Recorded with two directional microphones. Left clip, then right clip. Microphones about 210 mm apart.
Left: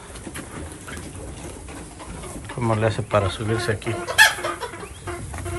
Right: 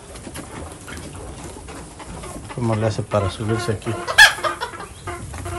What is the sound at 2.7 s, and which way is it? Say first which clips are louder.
Speech: left 1 dB; 20° right (ahead or behind).